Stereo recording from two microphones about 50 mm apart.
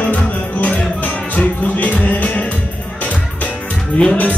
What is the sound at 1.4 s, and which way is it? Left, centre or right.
Music, left.